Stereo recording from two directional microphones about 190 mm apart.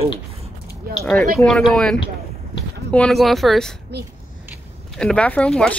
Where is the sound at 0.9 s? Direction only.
50° right (ahead or behind).